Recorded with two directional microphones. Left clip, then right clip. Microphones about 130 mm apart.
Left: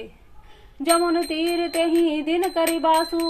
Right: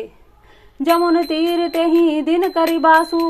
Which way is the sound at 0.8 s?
30° right (ahead or behind).